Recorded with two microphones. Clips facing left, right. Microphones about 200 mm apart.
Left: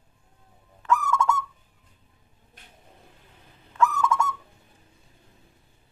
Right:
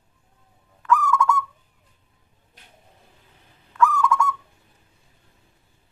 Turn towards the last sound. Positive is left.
turn(degrees=25)  # may be behind; listen again after turning